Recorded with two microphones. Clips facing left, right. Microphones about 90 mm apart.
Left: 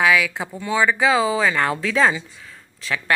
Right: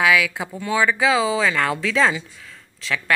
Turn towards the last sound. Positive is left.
turn(degrees=10)  # may be behind; listen again after turning